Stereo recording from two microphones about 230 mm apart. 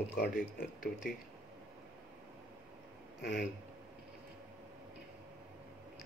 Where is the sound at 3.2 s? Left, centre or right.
Left.